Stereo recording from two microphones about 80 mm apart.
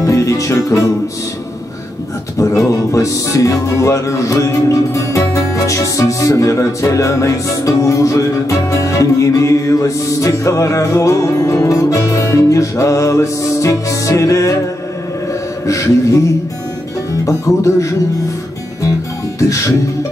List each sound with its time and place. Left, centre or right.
0.0 s music: left
2.3 s music: left
15.6 s a sound: left
17.1 s music: left